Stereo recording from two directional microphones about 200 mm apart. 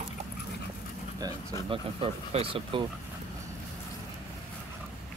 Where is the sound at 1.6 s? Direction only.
30° right (ahead or behind).